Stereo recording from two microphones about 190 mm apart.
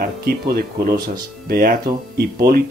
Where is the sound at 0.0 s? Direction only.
55° right (ahead or behind).